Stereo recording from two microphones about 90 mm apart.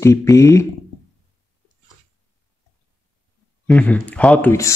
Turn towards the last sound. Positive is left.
turn(degrees=15)  # may be behind; listen again after turning